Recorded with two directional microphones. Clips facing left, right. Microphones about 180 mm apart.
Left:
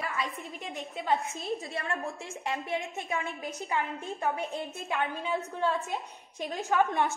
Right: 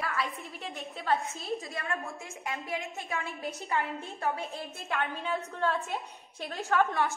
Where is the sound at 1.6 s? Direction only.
30° left (ahead or behind).